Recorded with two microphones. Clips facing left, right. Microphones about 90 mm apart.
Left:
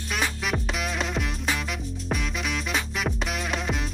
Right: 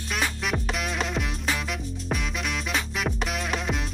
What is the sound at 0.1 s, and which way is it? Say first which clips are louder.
Music: even; centre (ahead or behind).